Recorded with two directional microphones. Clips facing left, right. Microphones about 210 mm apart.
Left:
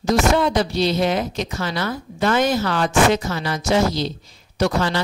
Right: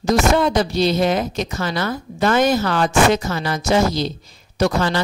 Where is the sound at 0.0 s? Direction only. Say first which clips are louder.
Right 1 dB; 45° right (ahead or behind).